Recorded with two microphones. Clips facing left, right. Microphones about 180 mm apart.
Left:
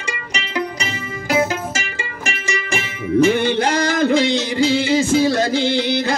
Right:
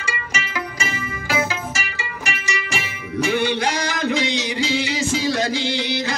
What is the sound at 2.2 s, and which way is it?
Music, 50° left (ahead or behind).